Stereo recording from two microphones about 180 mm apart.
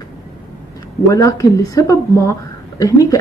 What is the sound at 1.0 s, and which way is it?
A woman's voice, 20° left (ahead or behind).